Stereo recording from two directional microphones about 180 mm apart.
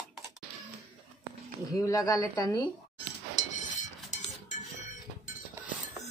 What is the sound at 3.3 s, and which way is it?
Chink, 40° left (ahead or behind).